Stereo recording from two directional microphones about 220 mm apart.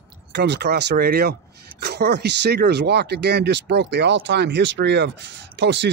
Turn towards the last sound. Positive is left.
turn(degrees=-55)  # may be behind; listen again after turning